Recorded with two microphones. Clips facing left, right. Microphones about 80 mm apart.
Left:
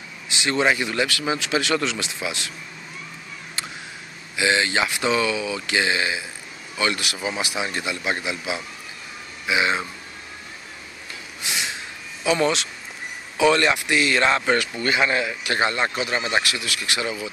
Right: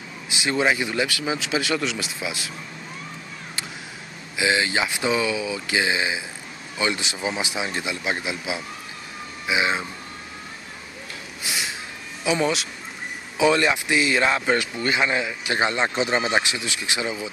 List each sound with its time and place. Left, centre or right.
0.4 s speech: centre
4.4 s a man's voice: centre
12.3 s speech: centre